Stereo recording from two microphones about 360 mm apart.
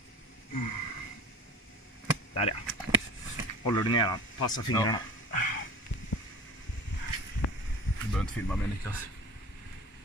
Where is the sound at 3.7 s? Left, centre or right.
Centre.